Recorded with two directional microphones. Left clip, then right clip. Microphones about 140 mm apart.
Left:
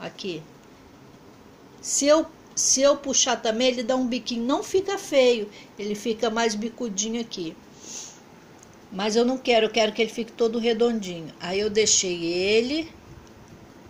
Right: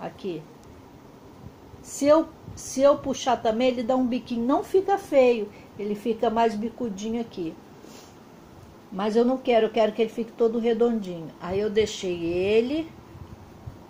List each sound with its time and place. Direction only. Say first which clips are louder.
0.0 s speech: even; 10° left (ahead or behind)
1.8 s speech: even; 5° left (ahead or behind)
8.9 s speech: even; 5° left (ahead or behind)